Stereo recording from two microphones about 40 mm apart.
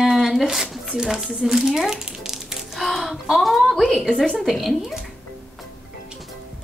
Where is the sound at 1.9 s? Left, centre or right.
Centre.